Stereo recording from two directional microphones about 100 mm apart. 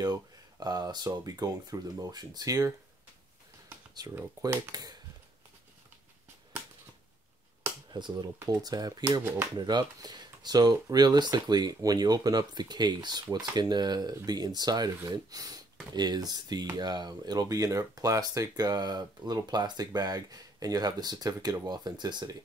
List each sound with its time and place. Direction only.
0.0 s speech: 40° right (ahead or behind)
4.0 s speech: 35° right (ahead or behind)
7.9 s speech: 45° right (ahead or behind)
8.4 s speech: 35° right (ahead or behind)